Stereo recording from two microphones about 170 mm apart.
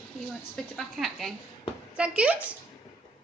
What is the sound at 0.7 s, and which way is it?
A woman's voice, centre (ahead or behind).